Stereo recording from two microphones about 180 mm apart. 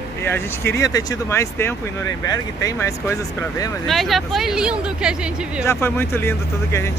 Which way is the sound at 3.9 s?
Centre (ahead or behind).